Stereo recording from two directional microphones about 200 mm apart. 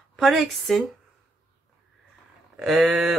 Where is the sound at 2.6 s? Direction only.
Centre (ahead or behind).